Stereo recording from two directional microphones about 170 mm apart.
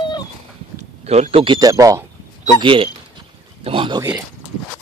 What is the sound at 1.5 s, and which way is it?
Speech, 20° right (ahead or behind).